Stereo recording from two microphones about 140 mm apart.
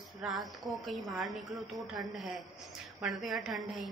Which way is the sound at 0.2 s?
Centre (ahead or behind).